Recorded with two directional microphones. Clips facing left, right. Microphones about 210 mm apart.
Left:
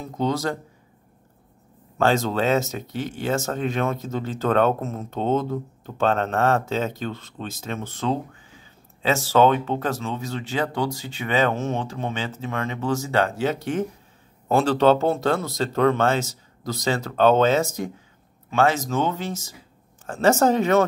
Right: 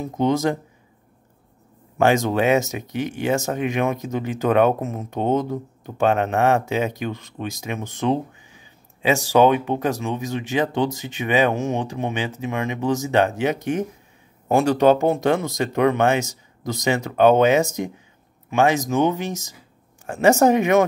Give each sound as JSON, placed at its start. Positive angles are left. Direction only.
{"t": 0.0, "sound": "speech", "side_deg": -20}
{"t": 2.0, "sound": "speech", "side_deg": -15}